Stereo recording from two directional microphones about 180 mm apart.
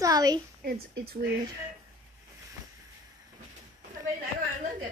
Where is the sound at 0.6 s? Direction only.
60° right (ahead or behind).